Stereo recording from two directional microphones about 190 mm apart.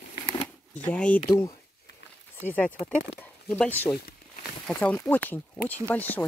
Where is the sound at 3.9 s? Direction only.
55° left (ahead or behind).